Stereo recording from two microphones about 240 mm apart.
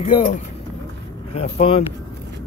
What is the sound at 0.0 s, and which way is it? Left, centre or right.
Speech, left.